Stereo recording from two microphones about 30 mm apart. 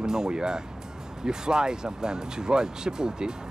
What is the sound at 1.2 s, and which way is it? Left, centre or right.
Speech, right.